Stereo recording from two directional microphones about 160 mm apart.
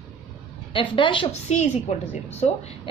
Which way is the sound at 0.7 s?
30° left (ahead or behind).